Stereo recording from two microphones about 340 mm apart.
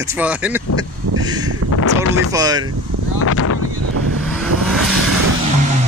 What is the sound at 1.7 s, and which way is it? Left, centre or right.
Speech, left.